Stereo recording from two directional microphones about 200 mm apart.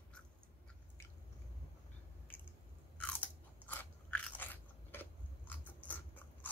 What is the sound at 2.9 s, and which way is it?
Biting, 5° left (ahead or behind).